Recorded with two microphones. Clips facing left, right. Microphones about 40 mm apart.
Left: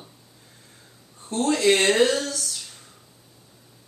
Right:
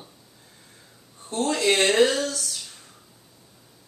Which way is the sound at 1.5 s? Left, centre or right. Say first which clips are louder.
Left 3 dB; left.